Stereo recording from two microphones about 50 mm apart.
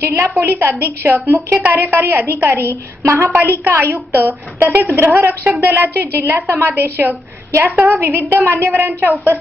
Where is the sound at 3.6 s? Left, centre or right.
Right.